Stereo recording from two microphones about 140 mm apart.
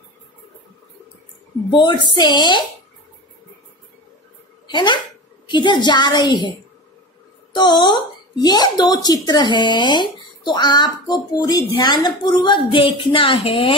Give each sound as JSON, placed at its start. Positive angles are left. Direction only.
{"t": 1.7, "sound": "speech", "side_deg": 30}
{"t": 4.6, "sound": "a woman's voice", "side_deg": 35}
{"t": 7.5, "sound": "speech", "side_deg": 35}